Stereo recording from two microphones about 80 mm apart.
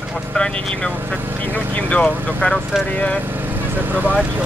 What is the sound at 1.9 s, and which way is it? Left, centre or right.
Speech, centre.